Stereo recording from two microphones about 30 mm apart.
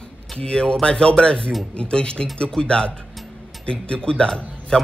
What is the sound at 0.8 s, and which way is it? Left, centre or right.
Music, left.